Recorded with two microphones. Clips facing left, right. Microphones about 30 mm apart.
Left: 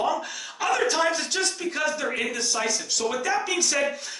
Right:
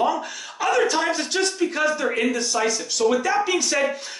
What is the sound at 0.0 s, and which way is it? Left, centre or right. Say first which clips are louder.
Speech: right 3 dB; centre.